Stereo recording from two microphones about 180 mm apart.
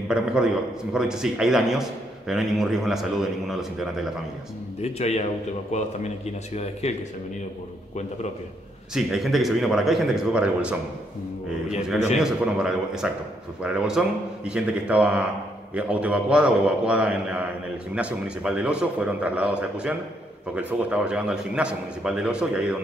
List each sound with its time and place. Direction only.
0.1 s a man's voice: 5° right (ahead or behind)
4.8 s speech: 35° left (ahead or behind)
8.9 s a man's voice: centre (ahead or behind)
12.2 s a man's voice: 5° right (ahead or behind)